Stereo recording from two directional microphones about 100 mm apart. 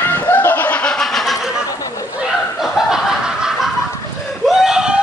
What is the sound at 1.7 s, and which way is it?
Chatter, 35° left (ahead or behind).